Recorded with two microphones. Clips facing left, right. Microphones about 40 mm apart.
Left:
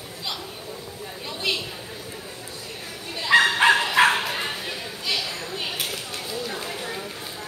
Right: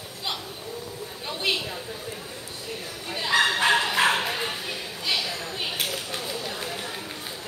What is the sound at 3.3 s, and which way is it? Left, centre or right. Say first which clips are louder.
Bow-wow: left 5 dB; left.